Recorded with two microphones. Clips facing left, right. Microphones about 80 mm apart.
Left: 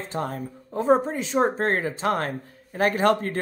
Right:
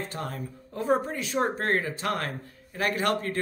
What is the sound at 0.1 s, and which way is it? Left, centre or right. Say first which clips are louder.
Speech: left 6 dB; left.